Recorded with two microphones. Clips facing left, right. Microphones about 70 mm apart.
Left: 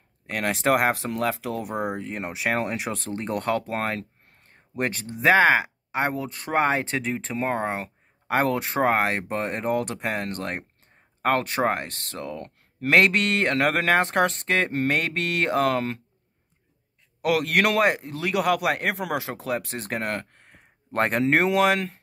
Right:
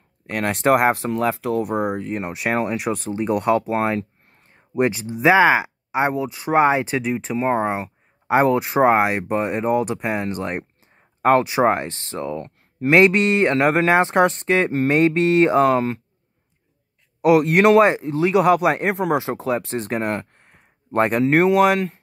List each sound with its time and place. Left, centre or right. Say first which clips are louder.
0.3 s speech: right 4 dB; centre
11.6 s speech: right 6 dB; right
17.2 s speech: right 7 dB; centre
19.1 s speech: right 7 dB; centre
19.9 s speech: right 3 dB; centre